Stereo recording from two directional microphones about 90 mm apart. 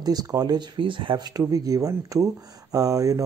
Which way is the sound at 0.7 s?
70° right (ahead or behind).